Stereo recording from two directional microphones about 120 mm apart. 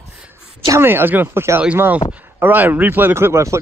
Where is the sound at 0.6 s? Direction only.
20° right (ahead or behind).